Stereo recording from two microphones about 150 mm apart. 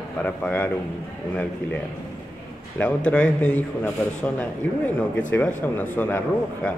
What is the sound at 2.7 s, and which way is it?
Speech, 10° left (ahead or behind).